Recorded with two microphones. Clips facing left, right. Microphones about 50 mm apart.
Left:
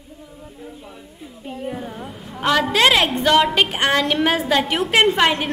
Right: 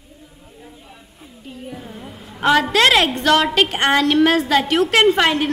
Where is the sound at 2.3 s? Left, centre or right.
Centre.